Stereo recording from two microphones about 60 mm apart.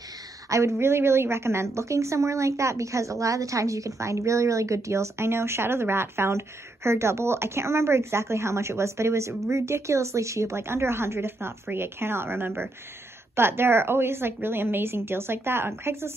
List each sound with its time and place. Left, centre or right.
0.5 s a woman's voice: right